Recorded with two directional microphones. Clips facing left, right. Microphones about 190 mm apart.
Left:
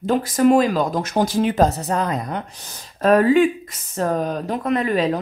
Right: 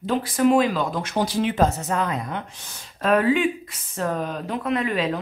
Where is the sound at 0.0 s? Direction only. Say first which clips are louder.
Left 4 dB; 45° left (ahead or behind).